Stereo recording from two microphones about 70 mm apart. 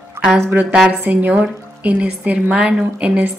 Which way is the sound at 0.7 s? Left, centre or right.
Centre.